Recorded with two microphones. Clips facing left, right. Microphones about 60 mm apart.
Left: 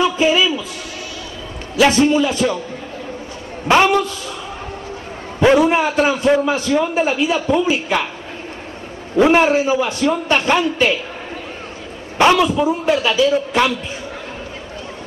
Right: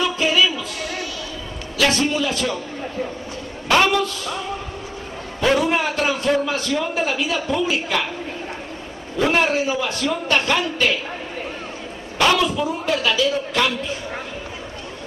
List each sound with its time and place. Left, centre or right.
0.0 s a sound: centre
1.8 s a man's voice: centre
3.6 s a man's voice: centre
5.4 s a man's voice: centre
9.1 s a man's voice: left
12.2 s a man's voice: left